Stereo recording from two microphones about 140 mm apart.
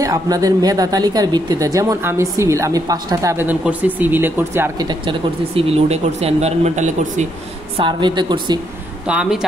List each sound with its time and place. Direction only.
0.0 s a woman's voice: 25° right (ahead or behind)
4.7 s speech: 35° right (ahead or behind); by 7.2 s 55° right (ahead or behind)
7.7 s speech: 35° right (ahead or behind)
9.0 s speech: 5° right (ahead or behind)